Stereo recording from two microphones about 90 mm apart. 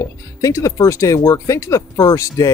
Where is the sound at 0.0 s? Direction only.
35° left (ahead or behind).